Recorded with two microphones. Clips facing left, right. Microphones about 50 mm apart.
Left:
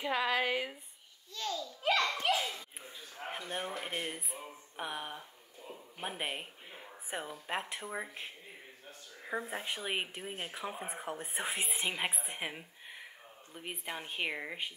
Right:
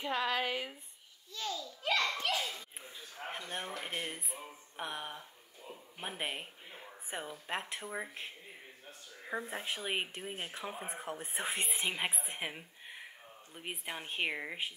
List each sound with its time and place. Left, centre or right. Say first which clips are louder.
0.0 s speech: left 2 dB; centre
1.8 s children playing: left 2 dB; centre
2.8 s speech: left 1 dB; centre